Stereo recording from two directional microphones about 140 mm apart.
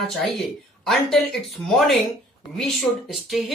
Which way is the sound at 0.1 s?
Centre (ahead or behind).